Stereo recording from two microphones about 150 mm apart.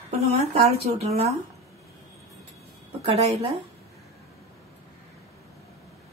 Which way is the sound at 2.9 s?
40° right (ahead or behind).